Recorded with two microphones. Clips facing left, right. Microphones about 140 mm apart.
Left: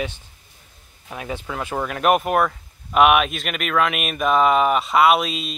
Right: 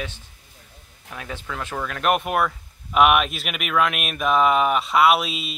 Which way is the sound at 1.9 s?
5° left (ahead or behind).